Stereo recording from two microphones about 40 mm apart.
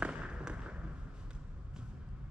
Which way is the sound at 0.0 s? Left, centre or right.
Right.